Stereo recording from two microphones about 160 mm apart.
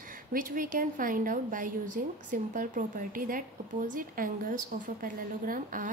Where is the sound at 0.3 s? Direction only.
60° right (ahead or behind).